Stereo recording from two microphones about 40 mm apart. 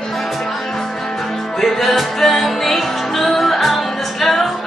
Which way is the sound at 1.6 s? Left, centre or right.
Centre.